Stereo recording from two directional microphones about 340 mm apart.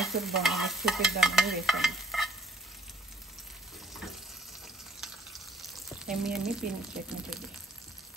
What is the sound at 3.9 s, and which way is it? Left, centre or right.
Frying, centre.